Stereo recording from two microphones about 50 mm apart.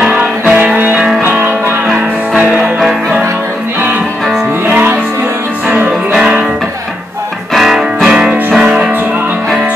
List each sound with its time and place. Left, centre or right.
0.1 s music: right
2.6 s music: centre
7.5 s music: centre